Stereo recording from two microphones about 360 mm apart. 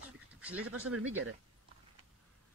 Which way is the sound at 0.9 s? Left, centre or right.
Right.